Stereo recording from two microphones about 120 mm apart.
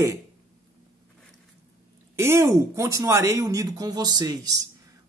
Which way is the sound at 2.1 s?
20° right (ahead or behind).